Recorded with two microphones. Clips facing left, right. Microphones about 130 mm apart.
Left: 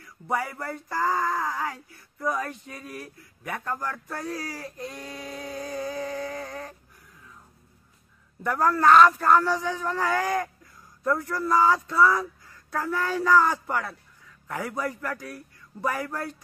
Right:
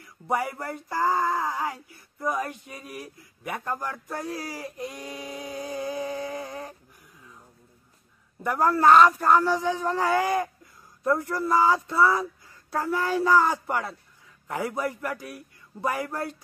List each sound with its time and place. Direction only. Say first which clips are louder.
0.3 s speech: right 1 dB; 20° right (ahead or behind)
8.4 s a man's voice: right 1 dB; 20° right (ahead or behind)